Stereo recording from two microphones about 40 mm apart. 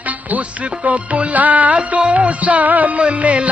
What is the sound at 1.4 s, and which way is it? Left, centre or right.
Music, right.